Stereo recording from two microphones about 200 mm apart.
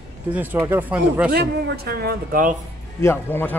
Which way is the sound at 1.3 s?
50° right (ahead or behind).